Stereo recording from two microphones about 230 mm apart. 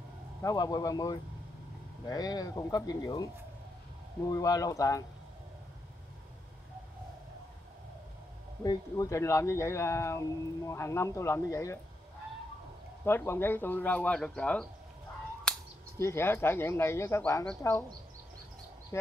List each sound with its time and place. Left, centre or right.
0.4 s speech: centre
4.3 s speech: centre
8.6 s speech: centre
13.0 s speech: centre
16.0 s speech: centre